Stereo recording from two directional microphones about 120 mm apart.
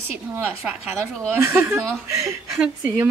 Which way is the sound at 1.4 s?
20° right (ahead or behind).